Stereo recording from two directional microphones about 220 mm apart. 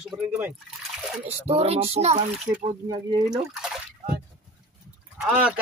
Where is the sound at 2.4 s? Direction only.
20° right (ahead or behind).